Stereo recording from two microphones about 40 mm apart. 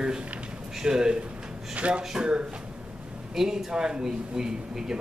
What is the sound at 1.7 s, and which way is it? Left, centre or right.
Speech, right.